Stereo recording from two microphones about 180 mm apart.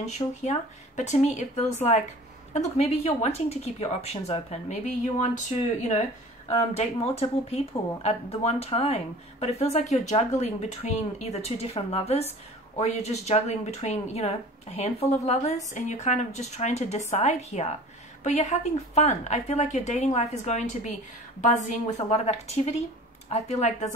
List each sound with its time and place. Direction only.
0.0 s speech: 40° left (ahead or behind)
5.8 s a woman's voice: 40° left (ahead or behind)